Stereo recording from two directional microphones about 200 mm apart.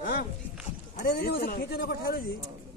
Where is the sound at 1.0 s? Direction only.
50° left (ahead or behind).